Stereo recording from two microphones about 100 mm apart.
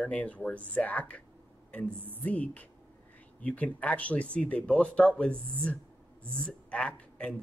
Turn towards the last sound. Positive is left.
turn(degrees=10)  # may be behind; listen again after turning